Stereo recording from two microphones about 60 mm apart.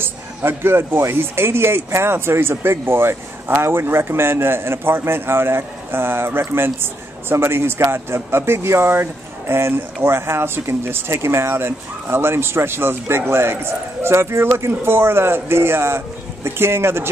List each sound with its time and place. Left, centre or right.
0.0 s speech: right